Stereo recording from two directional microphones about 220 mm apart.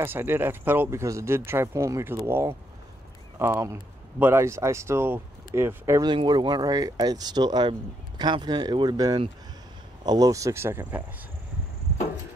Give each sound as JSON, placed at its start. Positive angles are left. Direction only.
{"t": 0.0, "sound": "speech", "side_deg": -10}